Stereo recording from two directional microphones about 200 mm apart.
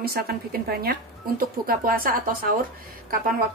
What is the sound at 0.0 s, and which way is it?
Speech, 50° right (ahead or behind).